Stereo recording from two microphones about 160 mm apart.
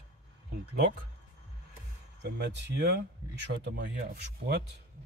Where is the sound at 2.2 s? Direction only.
90° right.